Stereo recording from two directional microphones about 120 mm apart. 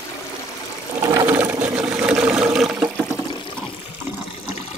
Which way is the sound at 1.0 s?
30° right (ahead or behind).